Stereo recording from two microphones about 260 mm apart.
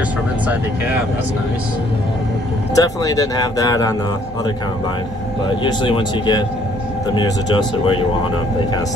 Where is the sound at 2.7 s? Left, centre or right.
Centre.